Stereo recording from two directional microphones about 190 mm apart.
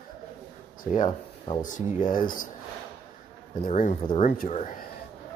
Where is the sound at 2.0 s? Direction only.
45° left (ahead or behind).